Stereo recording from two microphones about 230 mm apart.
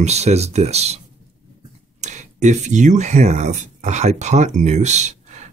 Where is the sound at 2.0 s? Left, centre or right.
Right.